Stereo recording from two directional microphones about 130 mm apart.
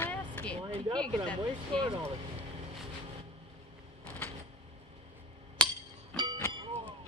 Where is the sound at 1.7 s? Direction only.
35° right (ahead or behind).